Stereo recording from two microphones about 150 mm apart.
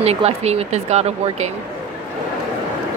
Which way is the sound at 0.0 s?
45° right (ahead or behind).